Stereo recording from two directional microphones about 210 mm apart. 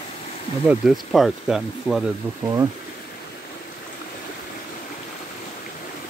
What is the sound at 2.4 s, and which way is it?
Speech, 15° right (ahead or behind).